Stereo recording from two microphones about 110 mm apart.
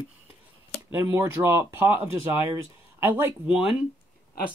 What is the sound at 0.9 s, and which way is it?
Speech, 25° right (ahead or behind).